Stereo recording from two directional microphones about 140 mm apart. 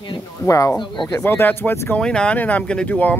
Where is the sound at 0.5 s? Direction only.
25° left (ahead or behind).